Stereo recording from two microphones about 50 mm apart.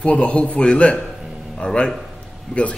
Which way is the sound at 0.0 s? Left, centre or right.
Left.